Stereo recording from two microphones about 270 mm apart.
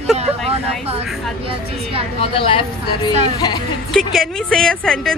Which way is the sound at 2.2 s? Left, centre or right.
Centre.